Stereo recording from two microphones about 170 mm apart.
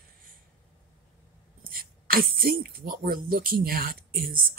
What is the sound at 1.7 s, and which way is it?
Speech, 60° right (ahead or behind).